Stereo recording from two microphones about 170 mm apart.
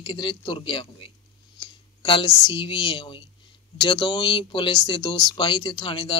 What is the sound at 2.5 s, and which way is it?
Speech, 30° left (ahead or behind).